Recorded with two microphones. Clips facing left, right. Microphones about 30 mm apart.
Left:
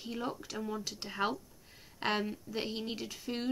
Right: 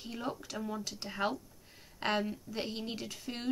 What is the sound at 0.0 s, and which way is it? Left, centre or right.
Speech, centre.